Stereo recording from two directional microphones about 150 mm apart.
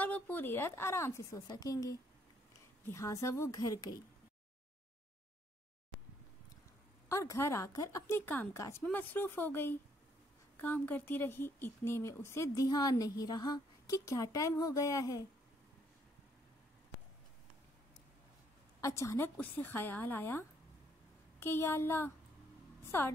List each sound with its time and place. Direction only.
0.0 s a woman's voice: 10° left (ahead or behind)
7.1 s a woman's voice: 20° left (ahead or behind)
18.8 s a woman's voice: 20° left (ahead or behind)